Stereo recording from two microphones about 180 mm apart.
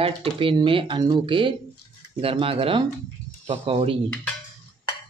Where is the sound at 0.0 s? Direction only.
30° right (ahead or behind).